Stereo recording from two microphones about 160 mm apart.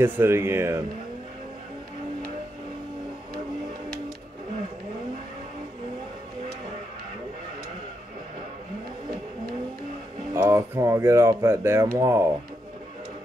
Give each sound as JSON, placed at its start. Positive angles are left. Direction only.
{"t": 0.0, "sound": "speech", "side_deg": -15}
{"t": 10.3, "sound": "speech", "side_deg": -20}